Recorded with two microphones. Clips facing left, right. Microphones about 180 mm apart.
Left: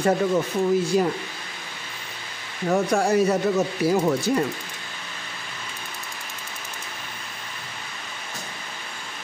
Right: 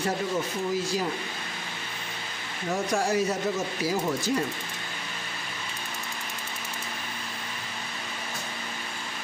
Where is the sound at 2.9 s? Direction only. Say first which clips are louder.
Left 4 dB; 60° left (ahead or behind).